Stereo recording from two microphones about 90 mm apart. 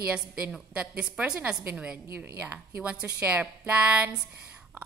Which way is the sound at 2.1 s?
25° right (ahead or behind).